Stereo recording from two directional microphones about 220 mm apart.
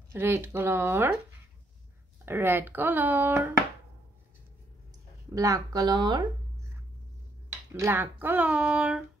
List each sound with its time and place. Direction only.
0.1 s speech: 10° right (ahead or behind)
2.2 s speech: 10° right (ahead or behind)
5.3 s speech: 15° right (ahead or behind)
7.8 s speech: 10° right (ahead or behind)